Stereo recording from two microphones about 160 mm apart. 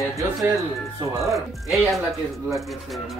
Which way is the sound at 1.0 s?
20° right (ahead or behind).